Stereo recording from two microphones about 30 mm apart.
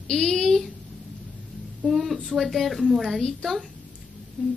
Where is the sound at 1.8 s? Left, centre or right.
Centre.